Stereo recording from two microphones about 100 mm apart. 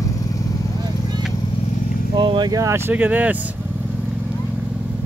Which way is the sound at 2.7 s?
20° right (ahead or behind).